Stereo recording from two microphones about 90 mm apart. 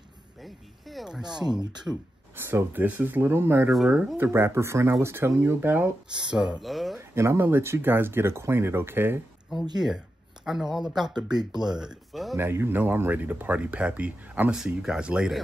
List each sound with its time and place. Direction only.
0.4 s speech: centre (ahead or behind)
2.3 s speech: 25° right (ahead or behind)
6.3 s speech: 10° right (ahead or behind)
6.6 s speech: centre (ahead or behind)
7.0 s speech: 30° right (ahead or behind)
9.8 s speech: 5° right (ahead or behind)
11.2 s speech: 50° right (ahead or behind)
11.6 s speech: 5° right (ahead or behind)
12.4 s speech: 25° right (ahead or behind)
14.5 s speech: 5° right (ahead or behind)